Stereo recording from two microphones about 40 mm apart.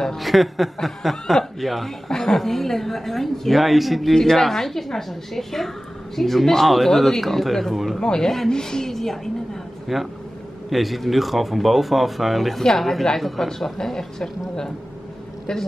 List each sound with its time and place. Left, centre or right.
0.2 s speech: centre
8.0 s a woman's voice: left
9.9 s a woman's voice: centre